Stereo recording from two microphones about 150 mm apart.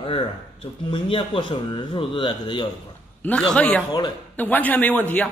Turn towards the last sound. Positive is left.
turn(degrees=10)  # may be behind; listen again after turning